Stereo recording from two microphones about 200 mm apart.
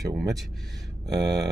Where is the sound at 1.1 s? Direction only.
55° right (ahead or behind).